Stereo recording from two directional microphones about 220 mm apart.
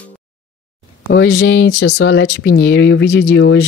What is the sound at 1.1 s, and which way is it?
Speech, 55° left (ahead or behind).